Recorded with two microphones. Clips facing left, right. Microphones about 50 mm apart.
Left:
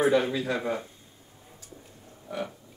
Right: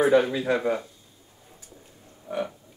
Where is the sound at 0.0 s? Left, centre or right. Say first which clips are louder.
Right 3 dB; right.